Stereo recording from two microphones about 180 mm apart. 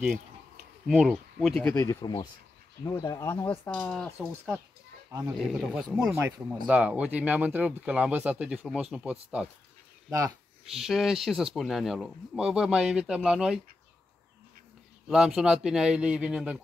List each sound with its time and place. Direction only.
0.8 s speech: centre (ahead or behind)
1.6 s speech: 15° left (ahead or behind)
5.4 s speech: 5° right (ahead or behind)
6.0 s speech: 15° right (ahead or behind)
10.0 s speech: 15° right (ahead or behind)
10.6 s speech: centre (ahead or behind)
15.0 s speech: 5° right (ahead or behind)